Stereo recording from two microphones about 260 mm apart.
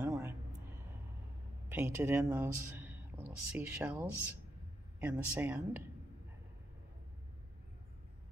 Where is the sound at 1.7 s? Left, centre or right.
Centre.